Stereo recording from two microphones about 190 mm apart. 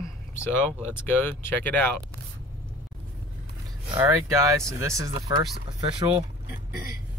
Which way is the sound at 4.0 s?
15° right (ahead or behind).